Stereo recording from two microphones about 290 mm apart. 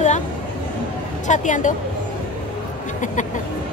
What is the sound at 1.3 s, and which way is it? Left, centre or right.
Speech, left.